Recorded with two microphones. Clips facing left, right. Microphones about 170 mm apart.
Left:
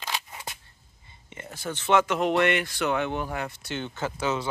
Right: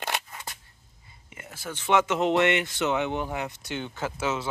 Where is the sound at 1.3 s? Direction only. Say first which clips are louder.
Left 4 dB; 5° right (ahead or behind).